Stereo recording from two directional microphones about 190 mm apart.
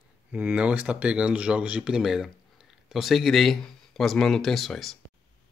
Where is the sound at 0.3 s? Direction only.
5° right (ahead or behind).